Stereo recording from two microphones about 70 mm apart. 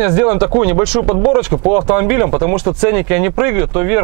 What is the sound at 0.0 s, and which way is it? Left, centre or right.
Speech, centre.